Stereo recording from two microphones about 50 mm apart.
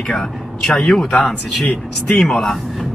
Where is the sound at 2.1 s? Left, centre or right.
Centre.